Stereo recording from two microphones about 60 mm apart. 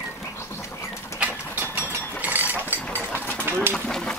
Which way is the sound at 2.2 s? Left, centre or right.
Right.